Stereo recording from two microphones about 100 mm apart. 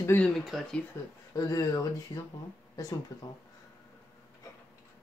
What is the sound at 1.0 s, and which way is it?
Speech, 30° left (ahead or behind).